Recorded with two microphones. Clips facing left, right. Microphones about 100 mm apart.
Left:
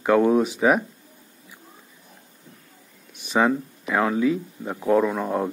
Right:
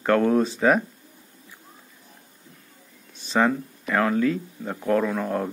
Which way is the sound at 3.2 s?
15° left (ahead or behind).